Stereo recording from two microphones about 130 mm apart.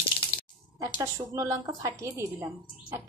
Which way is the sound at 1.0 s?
25° right (ahead or behind).